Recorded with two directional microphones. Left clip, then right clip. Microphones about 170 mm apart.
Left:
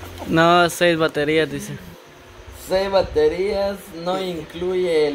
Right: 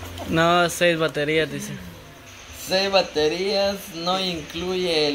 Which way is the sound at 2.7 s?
20° left (ahead or behind).